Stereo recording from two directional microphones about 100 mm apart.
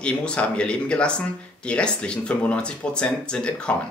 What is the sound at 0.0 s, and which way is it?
Speech, 10° left (ahead or behind).